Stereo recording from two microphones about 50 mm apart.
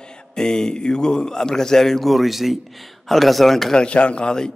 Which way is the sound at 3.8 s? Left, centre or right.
Left.